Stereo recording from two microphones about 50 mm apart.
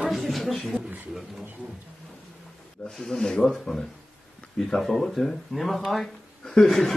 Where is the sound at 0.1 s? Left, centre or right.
Centre.